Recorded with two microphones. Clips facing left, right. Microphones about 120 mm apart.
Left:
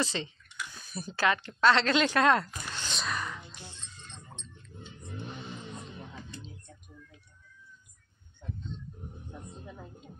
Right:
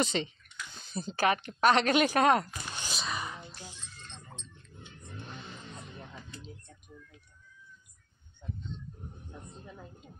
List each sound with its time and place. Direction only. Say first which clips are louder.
0.0 s speech: right 2 dB; 20° right (ahead or behind)
2.7 s music: left 2 dB; 15° right (ahead or behind)
3.0 s music: left 2 dB; centre (ahead or behind)